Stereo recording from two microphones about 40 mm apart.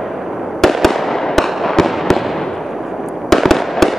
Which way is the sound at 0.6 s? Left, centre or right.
Centre.